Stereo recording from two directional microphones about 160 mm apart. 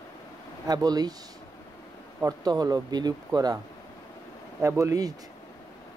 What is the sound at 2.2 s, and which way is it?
Speech, 25° right (ahead or behind).